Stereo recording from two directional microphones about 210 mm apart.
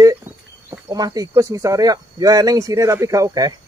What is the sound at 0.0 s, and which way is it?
Speech, 15° right (ahead or behind).